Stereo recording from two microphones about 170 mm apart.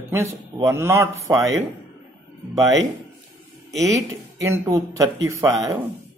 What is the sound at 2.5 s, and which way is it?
Speech, 20° right (ahead or behind).